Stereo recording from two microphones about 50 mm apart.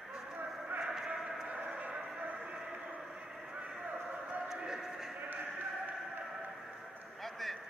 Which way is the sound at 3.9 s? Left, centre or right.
Right.